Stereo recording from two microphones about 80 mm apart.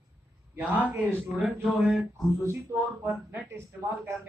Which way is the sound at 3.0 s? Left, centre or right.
Right.